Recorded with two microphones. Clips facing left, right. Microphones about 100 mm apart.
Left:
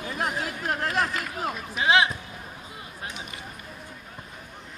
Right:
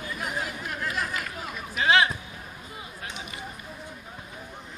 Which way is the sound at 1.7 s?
20° left (ahead or behind).